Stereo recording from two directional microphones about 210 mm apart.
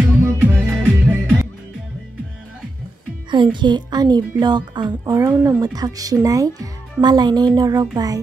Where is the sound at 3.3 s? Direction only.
20° right (ahead or behind).